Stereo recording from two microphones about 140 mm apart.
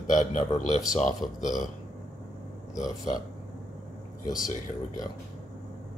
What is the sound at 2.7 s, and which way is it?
Speech, 60° left (ahead or behind).